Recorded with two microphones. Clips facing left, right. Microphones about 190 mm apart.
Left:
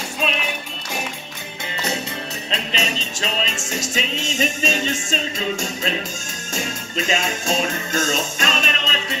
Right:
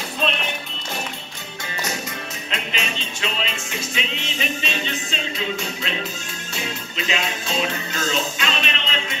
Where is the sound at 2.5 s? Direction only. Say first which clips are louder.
Left 3 dB; 40° left (ahead or behind).